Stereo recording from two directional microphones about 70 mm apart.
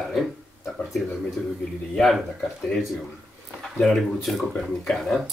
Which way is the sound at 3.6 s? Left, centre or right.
Centre.